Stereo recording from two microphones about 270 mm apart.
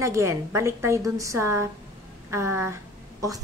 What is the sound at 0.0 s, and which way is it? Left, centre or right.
A woman's voice, centre.